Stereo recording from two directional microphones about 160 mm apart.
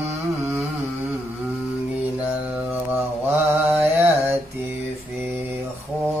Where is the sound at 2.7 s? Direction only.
15° right (ahead or behind).